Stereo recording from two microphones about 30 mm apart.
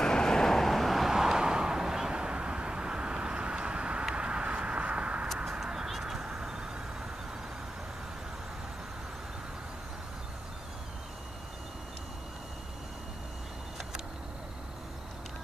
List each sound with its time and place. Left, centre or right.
0.0 s vehicle: left
0.6 s vehicle: centre
1.1 s a sound: centre
2.1 s vehicle: right
5.4 s a sound: centre
5.9 s duck: centre
6.1 s vehicle: right